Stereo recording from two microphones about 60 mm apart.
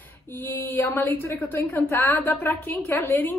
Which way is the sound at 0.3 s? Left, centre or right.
Left.